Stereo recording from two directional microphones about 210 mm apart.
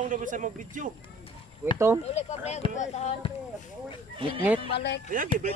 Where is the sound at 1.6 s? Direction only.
10° right (ahead or behind).